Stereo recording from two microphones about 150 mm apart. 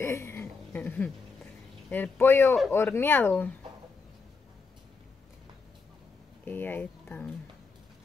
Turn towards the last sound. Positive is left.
turn(degrees=10)  # may be behind; listen again after turning